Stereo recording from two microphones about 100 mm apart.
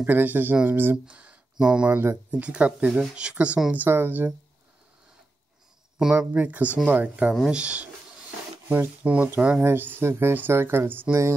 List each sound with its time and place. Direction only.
0.0 s speech: 15° right (ahead or behind)
5.9 s speech: 5° right (ahead or behind); by 11.3 s 25° right (ahead or behind)